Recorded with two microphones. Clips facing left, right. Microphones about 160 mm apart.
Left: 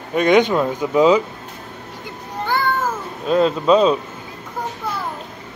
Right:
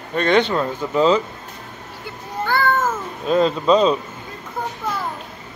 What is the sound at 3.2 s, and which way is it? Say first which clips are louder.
Speech: left 1 dB; 5° left (ahead or behind).